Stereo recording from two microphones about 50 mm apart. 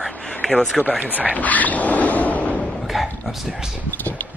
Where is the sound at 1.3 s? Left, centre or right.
Left.